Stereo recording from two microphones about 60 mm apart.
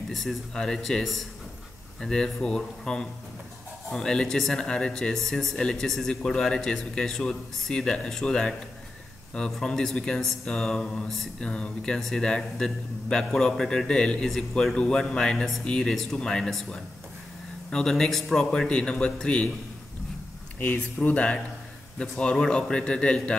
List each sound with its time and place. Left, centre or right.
0.1 s speech: centre
20.5 s speech: left